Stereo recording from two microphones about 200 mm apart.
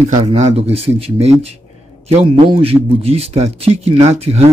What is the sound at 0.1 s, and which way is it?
A man's voice, 35° right (ahead or behind).